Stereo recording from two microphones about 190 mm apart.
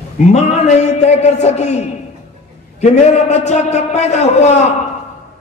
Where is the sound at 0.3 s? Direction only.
35° left (ahead or behind).